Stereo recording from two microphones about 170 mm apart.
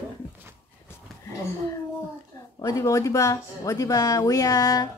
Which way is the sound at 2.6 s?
20° left (ahead or behind).